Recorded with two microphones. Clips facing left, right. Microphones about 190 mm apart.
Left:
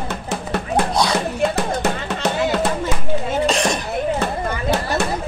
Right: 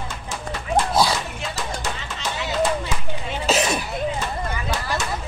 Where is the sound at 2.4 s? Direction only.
45° left (ahead or behind).